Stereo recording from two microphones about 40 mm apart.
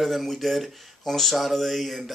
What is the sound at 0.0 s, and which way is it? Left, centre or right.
Speech, centre.